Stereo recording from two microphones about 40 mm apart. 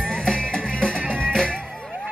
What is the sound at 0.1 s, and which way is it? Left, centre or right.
Music, centre.